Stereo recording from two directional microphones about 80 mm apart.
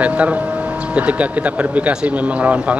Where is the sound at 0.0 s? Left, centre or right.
Centre.